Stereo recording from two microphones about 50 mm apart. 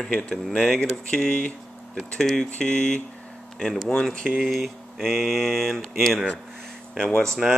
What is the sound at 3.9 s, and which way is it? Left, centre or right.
Speech, centre.